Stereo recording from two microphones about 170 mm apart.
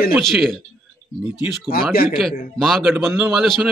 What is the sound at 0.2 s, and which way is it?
Speech, centre (ahead or behind).